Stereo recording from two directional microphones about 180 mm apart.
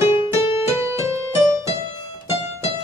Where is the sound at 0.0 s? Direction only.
15° right (ahead or behind).